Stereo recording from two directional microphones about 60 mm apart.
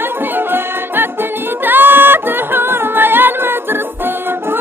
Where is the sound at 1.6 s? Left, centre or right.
Right.